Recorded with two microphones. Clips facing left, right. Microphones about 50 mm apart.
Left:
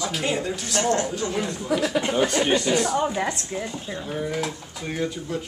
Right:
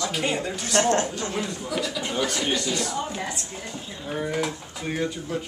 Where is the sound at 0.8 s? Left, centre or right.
Right.